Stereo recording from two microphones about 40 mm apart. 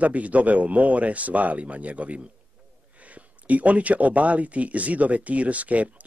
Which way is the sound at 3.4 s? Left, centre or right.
Right.